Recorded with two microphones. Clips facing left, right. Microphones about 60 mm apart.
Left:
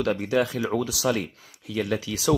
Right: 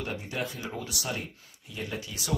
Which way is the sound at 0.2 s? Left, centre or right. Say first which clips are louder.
Left 11 dB; left.